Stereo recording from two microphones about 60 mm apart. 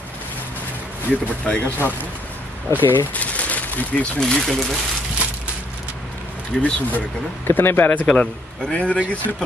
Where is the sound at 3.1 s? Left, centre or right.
Left.